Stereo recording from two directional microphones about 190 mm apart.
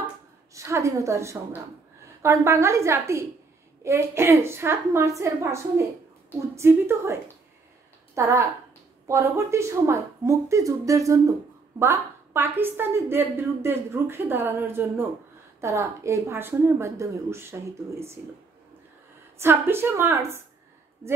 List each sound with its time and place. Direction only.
0.6 s a woman's voice: 15° right (ahead or behind)
19.3 s a woman's voice: 10° right (ahead or behind)